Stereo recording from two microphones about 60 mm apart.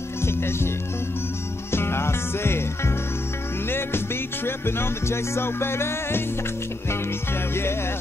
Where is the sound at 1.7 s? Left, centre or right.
Left.